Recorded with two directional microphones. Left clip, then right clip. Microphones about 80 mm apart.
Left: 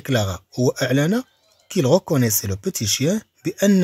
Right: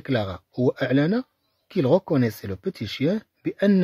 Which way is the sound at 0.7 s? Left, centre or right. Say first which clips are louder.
Left 2 dB; right.